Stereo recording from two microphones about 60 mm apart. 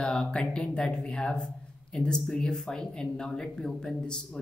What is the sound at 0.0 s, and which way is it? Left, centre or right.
Speech, centre.